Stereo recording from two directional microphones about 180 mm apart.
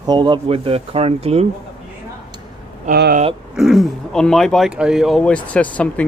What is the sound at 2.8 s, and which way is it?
Speech, 55° right (ahead or behind).